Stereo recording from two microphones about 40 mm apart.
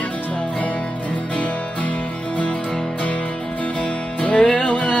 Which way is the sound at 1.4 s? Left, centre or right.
Left.